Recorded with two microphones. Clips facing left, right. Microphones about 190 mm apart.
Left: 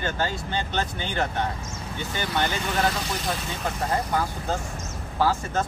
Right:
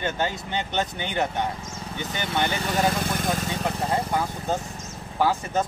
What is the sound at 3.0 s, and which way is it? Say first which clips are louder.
Speech: right 3 dB; 50° right (ahead or behind).